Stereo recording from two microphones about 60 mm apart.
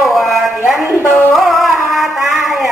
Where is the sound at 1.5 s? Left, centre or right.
Centre.